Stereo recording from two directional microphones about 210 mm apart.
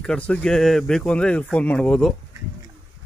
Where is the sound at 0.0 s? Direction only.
5° left (ahead or behind).